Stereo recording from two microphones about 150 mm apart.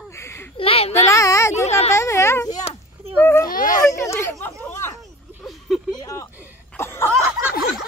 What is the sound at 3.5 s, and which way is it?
Speech, 65° left (ahead or behind).